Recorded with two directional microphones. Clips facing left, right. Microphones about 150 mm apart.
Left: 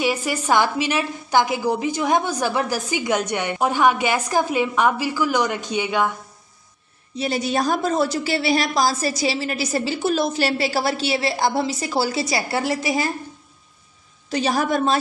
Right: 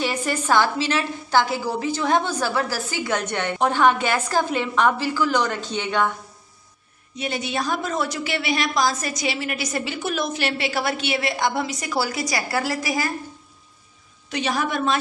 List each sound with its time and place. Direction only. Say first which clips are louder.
0.0 s a woman's voice: left 2 dB; 10° left (ahead or behind)
7.2 s a woman's voice: left 4 dB; 35° left (ahead or behind)
14.3 s a woman's voice: left 4 dB; 35° left (ahead or behind)